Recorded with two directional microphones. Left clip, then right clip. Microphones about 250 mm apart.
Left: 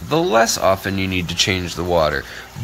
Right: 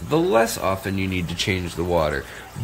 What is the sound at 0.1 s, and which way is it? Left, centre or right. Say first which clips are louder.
Speech: left 3 dB; centre.